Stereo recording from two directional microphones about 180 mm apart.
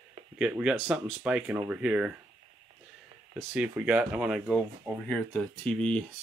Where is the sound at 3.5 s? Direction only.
10° right (ahead or behind).